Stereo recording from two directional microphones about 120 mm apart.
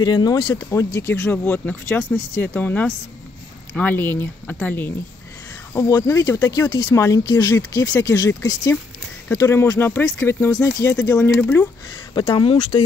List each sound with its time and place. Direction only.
0.0 s speech: 35° left (ahead or behind)
0.7 s speech: 25° left (ahead or behind)
5.8 s speech: 30° left (ahead or behind)
12.1 s speech: 40° left (ahead or behind)